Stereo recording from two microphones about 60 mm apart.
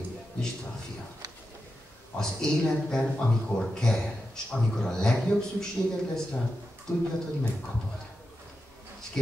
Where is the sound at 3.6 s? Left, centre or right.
Centre.